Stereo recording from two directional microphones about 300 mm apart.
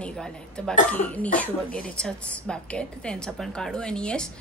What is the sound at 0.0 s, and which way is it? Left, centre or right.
Speech, centre.